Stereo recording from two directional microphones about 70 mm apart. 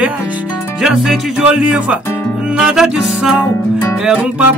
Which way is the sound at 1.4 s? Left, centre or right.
Centre.